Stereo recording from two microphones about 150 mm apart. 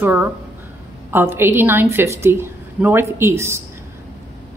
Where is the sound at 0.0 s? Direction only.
15° right (ahead or behind).